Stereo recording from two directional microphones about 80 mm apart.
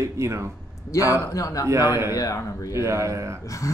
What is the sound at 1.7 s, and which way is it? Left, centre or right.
Speech, right.